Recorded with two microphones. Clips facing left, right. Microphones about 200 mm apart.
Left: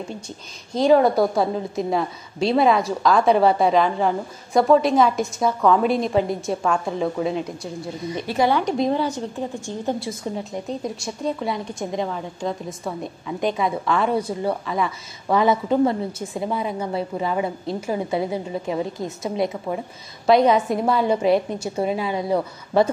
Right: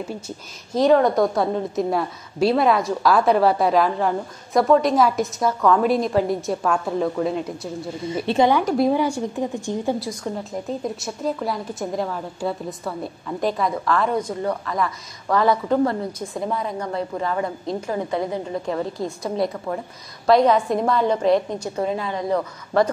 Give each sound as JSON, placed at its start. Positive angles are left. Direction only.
{"t": 0.7, "sound": "a woman's voice", "side_deg": 5}
{"t": 8.3, "sound": "speech", "side_deg": -20}
{"t": 8.6, "sound": "a woman's voice", "side_deg": -5}
{"t": 9.9, "sound": "a woman's voice", "side_deg": 0}
{"t": 15.7, "sound": "a woman's voice", "side_deg": 20}
{"t": 16.3, "sound": "a woman's voice", "side_deg": 5}
{"t": 19.0, "sound": "a woman's voice", "side_deg": 20}
{"t": 20.2, "sound": "a woman's voice", "side_deg": 0}